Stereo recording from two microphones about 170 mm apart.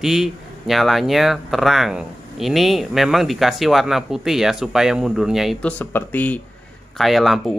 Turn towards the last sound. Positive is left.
turn(degrees=0)  # may be behind; listen again after turning